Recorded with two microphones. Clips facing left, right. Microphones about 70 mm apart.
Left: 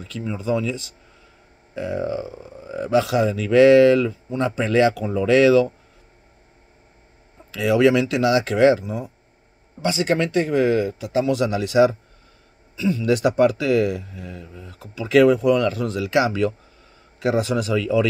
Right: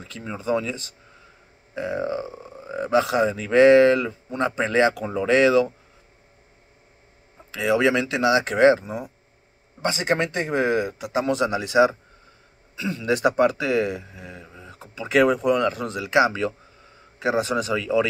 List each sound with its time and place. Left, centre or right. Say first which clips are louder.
0.0 s speech: left 4 dB; right
0.4 s speech: left 1 dB; right
7.5 s speech: left 3 dB; right
11.2 s speech: even; right
11.5 s speech: left 2 dB; right
13.0 s speech: left 1 dB; right
14.1 s mantra: left 4 dB; centre
14.7 s speech: left 3 dB; right
15.0 s speech: left 4 dB; centre